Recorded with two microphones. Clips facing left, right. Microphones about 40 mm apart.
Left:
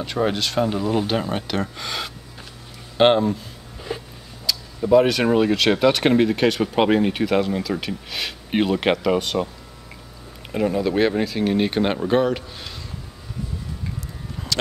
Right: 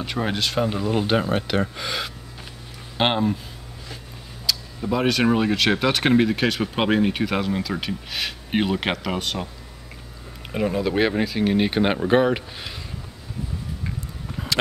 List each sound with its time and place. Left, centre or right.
0.0 s speech: centre
3.9 s a sound: left
4.5 s speech: centre
10.5 s speech: centre